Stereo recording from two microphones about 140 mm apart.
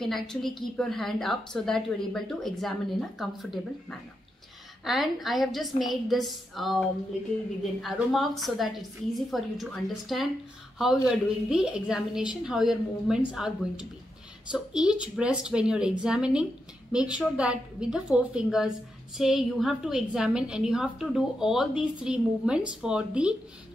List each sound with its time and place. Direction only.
0.0 s a woman's voice: 5° left (ahead or behind)